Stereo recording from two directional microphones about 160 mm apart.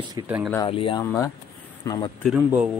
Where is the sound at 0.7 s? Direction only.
35° left (ahead or behind).